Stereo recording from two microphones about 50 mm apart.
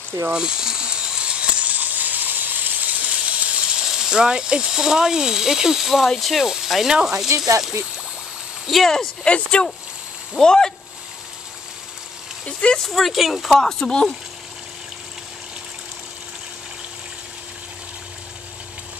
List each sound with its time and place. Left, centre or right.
0.3 s sizzle: centre
3.9 s speech: centre
6.4 s speech: centre
7.2 s speech: right
8.6 s speech: centre
9.2 s speech: left
12.7 s speech: centre